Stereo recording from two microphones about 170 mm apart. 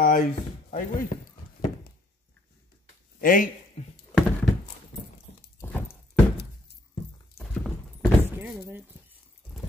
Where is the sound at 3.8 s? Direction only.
40° left (ahead or behind).